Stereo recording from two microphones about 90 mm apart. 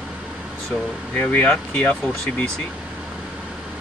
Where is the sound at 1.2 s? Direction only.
20° left (ahead or behind).